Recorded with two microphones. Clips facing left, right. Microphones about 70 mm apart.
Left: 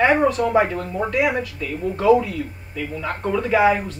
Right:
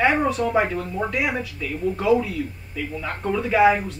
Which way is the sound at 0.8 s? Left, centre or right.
Centre.